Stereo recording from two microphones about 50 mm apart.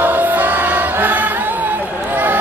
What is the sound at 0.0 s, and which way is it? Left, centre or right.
Music, right.